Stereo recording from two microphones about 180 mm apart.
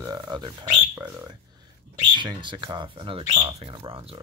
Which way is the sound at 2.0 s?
25° right (ahead or behind).